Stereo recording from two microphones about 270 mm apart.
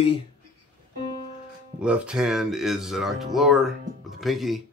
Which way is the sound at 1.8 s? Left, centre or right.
Centre.